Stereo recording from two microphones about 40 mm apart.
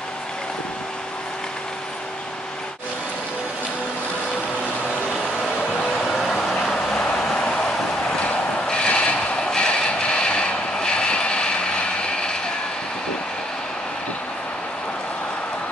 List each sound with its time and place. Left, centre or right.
6.1 s vehicle: centre
8.6 s vehicle: left
9.5 s train: left